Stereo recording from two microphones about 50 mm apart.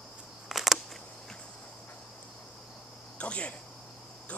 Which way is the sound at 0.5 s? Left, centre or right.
Centre.